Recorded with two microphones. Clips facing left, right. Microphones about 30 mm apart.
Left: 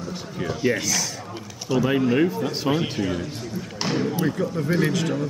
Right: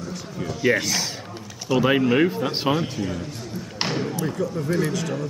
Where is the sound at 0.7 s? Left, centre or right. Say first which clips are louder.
Right 2 dB; right.